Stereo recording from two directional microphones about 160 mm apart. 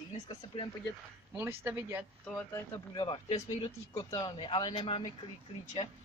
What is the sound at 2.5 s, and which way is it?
Speech, 15° left (ahead or behind).